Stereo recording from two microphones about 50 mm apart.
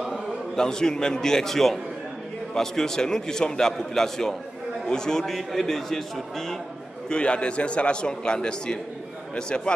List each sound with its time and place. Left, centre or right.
0.6 s a man's voice: centre
7.1 s a man's voice: left